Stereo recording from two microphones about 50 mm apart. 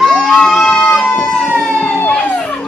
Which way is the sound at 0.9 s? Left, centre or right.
Left.